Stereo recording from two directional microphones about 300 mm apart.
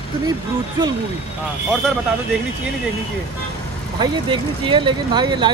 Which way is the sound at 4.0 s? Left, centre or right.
Centre.